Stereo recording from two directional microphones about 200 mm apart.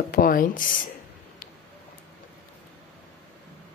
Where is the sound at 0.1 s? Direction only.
45° left (ahead or behind).